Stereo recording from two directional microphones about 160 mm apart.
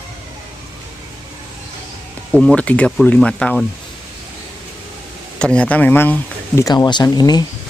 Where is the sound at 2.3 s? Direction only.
5° left (ahead or behind).